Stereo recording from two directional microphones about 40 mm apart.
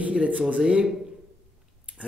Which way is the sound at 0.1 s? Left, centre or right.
Right.